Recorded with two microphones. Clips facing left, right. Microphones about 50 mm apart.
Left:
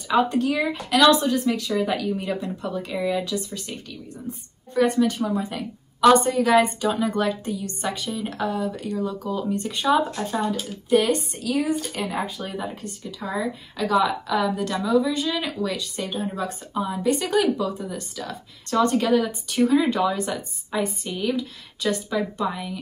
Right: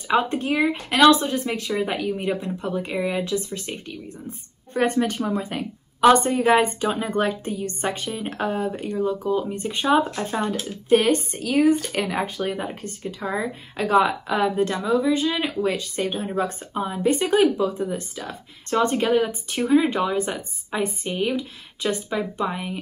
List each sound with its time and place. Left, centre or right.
0.1 s speech: right
11.9 s a woman's voice: right